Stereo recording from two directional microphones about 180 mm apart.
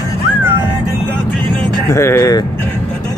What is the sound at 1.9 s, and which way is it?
Speech, 15° left (ahead or behind).